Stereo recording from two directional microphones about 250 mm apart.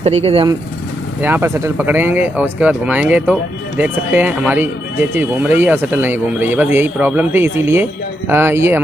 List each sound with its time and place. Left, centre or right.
0.0 s speech: right
1.2 s speech: centre